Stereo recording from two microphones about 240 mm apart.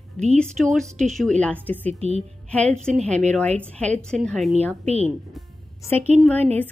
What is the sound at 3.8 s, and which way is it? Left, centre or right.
Speech, centre.